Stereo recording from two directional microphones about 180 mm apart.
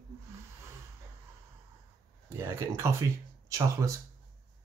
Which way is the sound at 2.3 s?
15° right (ahead or behind).